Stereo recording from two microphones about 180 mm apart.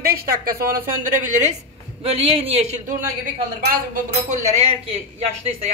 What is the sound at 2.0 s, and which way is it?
Speech, 35° right (ahead or behind).